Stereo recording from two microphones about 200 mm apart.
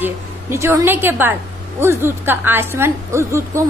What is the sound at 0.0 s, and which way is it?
A woman's voice, 10° right (ahead or behind).